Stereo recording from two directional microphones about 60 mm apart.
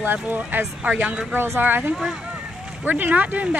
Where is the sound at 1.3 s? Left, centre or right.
Right.